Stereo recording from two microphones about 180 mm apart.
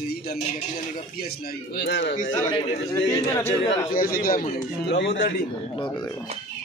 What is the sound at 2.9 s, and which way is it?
A man's voice, 15° left (ahead or behind).